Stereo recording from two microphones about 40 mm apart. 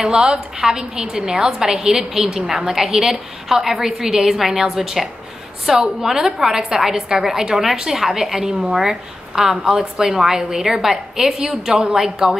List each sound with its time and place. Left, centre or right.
0.2 s a woman's voice: right